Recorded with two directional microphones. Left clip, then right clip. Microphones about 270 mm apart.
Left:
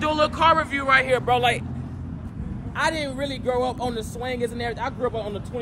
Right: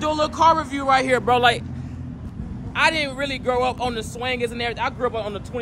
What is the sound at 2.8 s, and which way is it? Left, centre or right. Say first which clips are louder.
A man's voice: right 4 dB; centre.